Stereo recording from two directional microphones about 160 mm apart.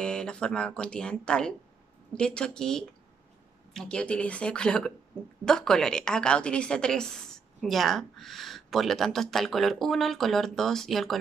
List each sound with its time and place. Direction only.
0.0 s a woman's voice: 5° left (ahead or behind)